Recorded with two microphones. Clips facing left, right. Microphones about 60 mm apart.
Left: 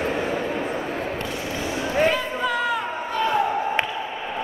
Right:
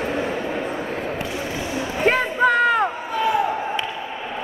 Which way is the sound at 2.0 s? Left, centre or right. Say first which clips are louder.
Right 9 dB; right.